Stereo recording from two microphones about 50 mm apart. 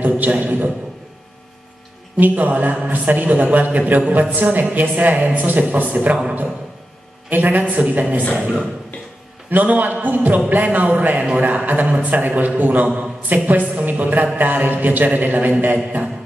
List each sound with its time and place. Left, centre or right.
0.0 s a sound: right
2.1 s a man's voice: right
7.2 s a man's voice: right
9.5 s a man's voice: right